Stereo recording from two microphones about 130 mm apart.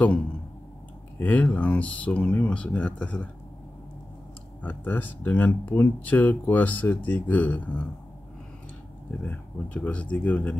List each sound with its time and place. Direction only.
1.1 s speech: 10° left (ahead or behind)
4.6 s speech: 15° left (ahead or behind)
9.2 s speech: 10° left (ahead or behind)